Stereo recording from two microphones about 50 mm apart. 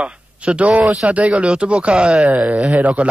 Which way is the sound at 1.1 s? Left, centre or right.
Right.